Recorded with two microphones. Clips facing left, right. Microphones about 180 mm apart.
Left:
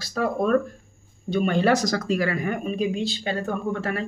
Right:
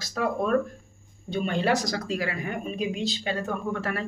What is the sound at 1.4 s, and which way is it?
Speech, 45° left (ahead or behind).